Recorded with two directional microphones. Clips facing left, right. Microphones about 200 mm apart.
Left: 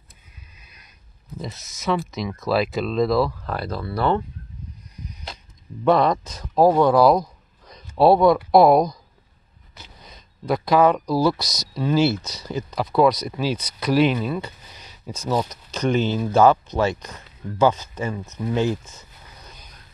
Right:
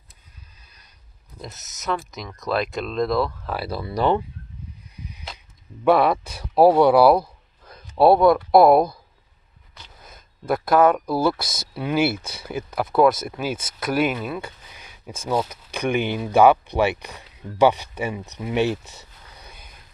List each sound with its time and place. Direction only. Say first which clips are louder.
1.4 s speech: left 5 dB; centre (ahead or behind)
4.9 s arrow: left 1 dB; 5° right (ahead or behind)
5.9 s speech: even; 5° right (ahead or behind)
10.4 s speech: even; 5° right (ahead or behind)
11.4 s speech: even; 55° right (ahead or behind)
11.7 s speech: left 2 dB; 10° right (ahead or behind)